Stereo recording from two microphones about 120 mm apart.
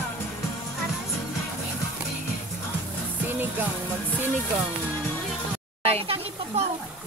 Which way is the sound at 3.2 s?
15° right (ahead or behind).